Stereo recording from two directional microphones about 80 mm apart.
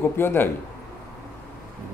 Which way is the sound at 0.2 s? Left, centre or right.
Left.